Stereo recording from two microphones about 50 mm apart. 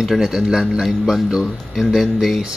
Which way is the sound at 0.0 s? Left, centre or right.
Centre.